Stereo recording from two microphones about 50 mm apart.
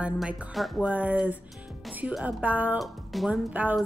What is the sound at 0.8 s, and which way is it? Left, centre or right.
A woman's voice, right.